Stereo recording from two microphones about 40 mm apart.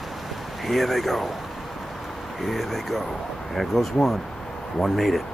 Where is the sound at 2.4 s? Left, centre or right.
Centre.